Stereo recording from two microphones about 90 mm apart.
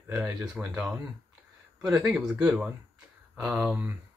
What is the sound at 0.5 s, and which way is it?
Speech, 15° right (ahead or behind).